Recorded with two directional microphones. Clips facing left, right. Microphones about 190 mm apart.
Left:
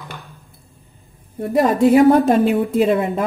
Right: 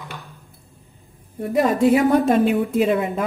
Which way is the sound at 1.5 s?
40° left (ahead or behind).